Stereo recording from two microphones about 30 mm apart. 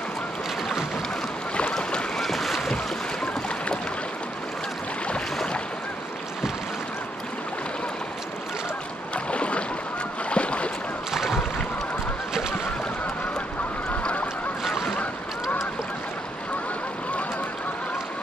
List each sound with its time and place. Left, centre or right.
1.7 s boat: left
2.1 s boat: centre
9.1 s boat: left
14.6 s boat: centre